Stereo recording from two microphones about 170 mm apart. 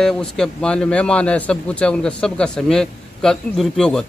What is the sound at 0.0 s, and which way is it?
A man's voice, 5° left (ahead or behind).